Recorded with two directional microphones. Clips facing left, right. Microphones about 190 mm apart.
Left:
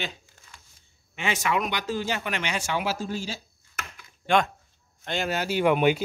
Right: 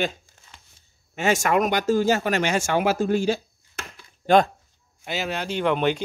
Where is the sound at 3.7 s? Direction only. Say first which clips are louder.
Right 2 dB; 35° right (ahead or behind).